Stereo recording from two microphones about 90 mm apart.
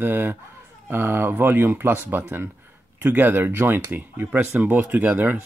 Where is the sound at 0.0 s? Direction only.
20° right (ahead or behind).